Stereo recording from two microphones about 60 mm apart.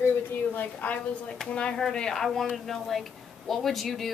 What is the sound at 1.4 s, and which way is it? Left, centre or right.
Speech, centre.